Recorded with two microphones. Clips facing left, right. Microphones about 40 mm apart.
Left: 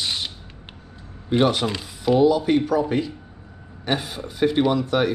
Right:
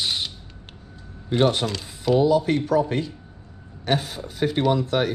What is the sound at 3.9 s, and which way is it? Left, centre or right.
Speech, centre.